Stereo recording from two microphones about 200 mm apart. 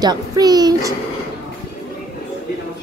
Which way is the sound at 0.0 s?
20° right (ahead or behind).